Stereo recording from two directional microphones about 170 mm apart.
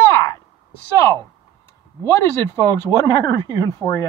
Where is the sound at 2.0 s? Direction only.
15° left (ahead or behind).